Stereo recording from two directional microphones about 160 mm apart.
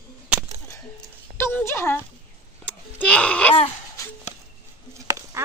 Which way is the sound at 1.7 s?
15° left (ahead or behind).